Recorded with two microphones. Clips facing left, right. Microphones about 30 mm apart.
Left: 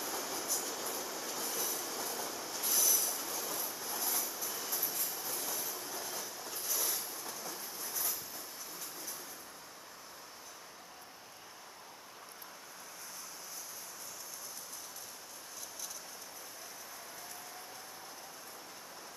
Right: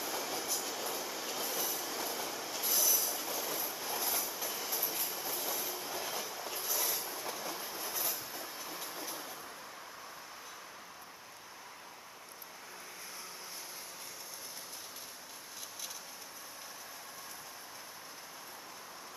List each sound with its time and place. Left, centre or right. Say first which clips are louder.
0.0 s train: right 2 dB; centre
7.1 s train: right 4 dB; right